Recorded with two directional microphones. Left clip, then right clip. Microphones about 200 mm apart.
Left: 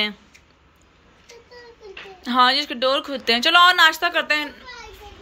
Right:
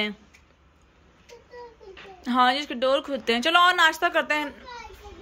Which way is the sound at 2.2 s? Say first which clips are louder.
Left 4 dB; 15° right (ahead or behind).